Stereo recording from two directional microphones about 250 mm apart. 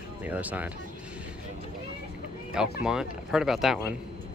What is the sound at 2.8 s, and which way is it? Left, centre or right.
Speech, centre.